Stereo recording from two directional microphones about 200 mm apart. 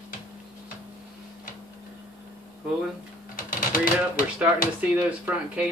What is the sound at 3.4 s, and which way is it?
Typewriter, 45° left (ahead or behind).